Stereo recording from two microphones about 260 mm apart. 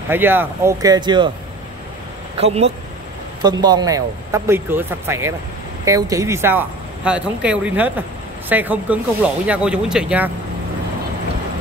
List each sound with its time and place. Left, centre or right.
0.1 s speech: centre
2.3 s speech: right; by 10.3 s centre